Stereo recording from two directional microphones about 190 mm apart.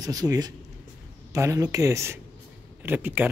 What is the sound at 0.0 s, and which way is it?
Speech, 20° right (ahead or behind).